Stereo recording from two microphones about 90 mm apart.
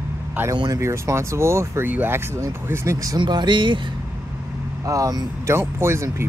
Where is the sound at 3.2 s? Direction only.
55° right (ahead or behind).